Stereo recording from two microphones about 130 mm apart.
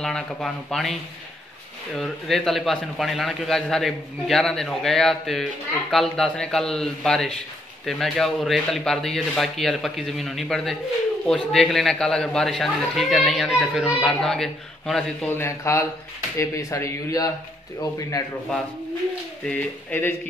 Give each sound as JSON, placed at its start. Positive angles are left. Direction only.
{"t": 0.0, "sound": "a man's voice", "side_deg": 5}
{"t": 2.0, "sound": "a man's voice", "side_deg": 0}
{"t": 15.2, "sound": "speech", "side_deg": 20}
{"t": 19.4, "sound": "speech", "side_deg": 10}